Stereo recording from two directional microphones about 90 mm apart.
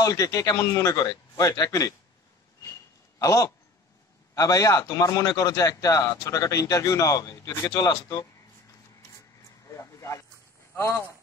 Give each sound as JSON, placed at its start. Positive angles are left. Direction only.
{"t": 0.0, "sound": "speech", "side_deg": 40}
{"t": 3.2, "sound": "a man's voice", "side_deg": 35}
{"t": 9.7, "sound": "a sound", "side_deg": 35}